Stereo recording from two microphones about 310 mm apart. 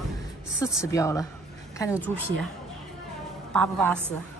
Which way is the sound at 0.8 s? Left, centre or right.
Centre.